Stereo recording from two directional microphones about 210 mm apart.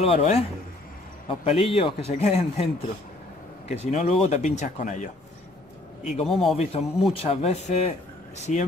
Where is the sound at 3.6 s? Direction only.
30° left (ahead or behind).